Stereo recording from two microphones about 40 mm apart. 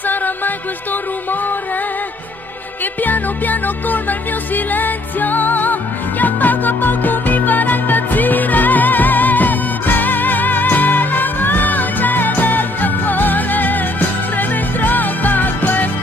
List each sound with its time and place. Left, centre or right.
0.0 s music: left
3.0 s music: left